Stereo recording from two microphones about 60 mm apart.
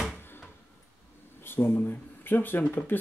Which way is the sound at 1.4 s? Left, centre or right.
Left.